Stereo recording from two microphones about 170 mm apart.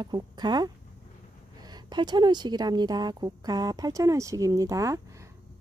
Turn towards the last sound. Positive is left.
turn(degrees=-20)  # may be behind; listen again after turning